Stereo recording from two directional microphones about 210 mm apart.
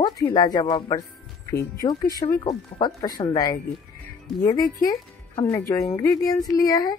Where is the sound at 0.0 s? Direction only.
20° left (ahead or behind).